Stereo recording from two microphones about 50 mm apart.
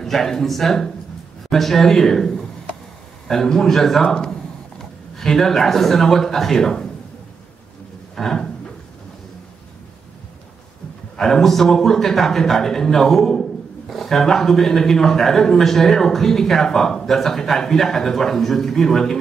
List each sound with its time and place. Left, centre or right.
0.0 s a man's voice: centre
8.2 s a sound: centre
11.1 s a man's voice: centre